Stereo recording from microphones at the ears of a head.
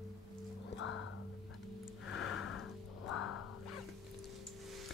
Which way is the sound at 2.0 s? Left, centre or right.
Left.